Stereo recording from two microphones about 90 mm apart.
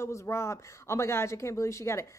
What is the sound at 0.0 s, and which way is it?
Speech, 30° left (ahead or behind).